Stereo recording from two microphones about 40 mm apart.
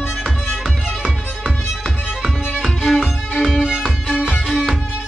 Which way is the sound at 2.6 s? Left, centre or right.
Centre.